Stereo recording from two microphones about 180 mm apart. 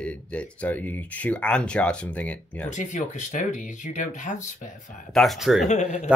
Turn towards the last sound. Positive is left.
turn(degrees=40)  # may be behind; listen again after turning